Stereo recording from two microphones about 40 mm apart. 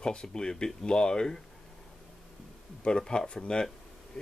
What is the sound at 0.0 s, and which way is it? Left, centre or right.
Speech, left.